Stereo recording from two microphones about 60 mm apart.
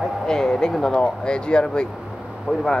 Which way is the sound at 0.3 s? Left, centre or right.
Centre.